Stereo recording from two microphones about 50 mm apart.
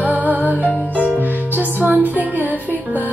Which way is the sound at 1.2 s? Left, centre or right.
Right.